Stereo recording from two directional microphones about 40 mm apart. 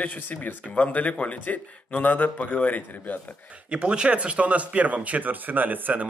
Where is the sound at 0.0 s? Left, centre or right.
Left.